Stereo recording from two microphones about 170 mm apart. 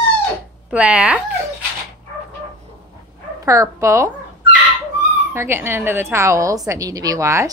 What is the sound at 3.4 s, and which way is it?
Speech, 20° right (ahead or behind).